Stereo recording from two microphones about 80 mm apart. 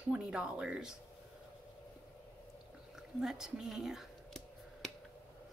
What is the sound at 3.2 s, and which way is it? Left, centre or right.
Speech, centre.